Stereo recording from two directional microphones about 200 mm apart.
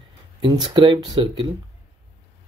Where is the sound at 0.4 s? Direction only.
20° right (ahead or behind).